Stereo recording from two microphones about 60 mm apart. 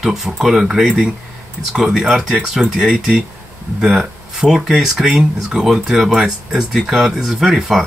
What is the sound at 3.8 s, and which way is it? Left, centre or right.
Speech, centre.